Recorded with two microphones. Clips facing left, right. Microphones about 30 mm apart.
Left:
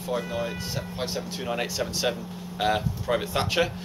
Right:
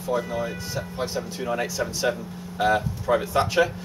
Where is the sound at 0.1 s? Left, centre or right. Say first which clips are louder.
Right 3 dB; left.